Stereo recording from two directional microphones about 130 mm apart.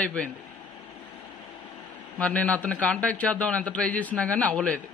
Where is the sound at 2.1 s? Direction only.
10° left (ahead or behind).